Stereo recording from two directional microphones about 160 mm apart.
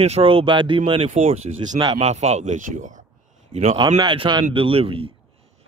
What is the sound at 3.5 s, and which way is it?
Speech, 40° right (ahead or behind).